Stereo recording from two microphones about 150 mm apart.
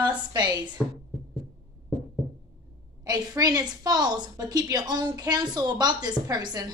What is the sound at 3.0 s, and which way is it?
A woman's voice, 25° right (ahead or behind).